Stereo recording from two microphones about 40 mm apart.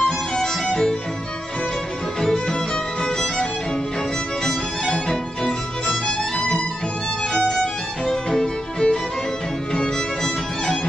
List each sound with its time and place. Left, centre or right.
0.0 s music: centre
3.0 s music: centre
4.5 s music: centre
8.1 s music: centre